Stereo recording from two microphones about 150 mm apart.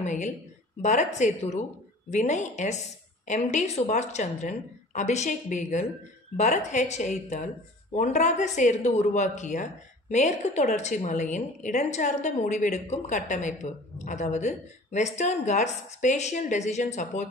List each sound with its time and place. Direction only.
0.0 s a woman's voice: 50° left (ahead or behind)